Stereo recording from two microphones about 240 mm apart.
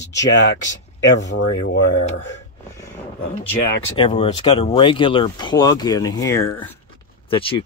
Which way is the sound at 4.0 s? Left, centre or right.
Left.